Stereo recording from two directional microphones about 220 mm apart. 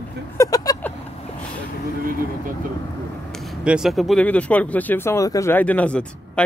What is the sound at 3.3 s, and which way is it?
Speech, centre (ahead or behind).